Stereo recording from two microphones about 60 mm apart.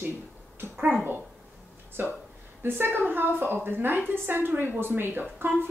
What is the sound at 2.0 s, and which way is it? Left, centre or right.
Speech, right.